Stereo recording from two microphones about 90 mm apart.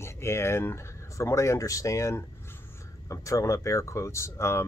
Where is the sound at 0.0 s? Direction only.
30° left (ahead or behind).